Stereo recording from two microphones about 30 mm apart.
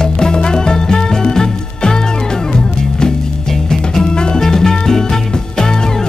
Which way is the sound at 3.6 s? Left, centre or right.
Left.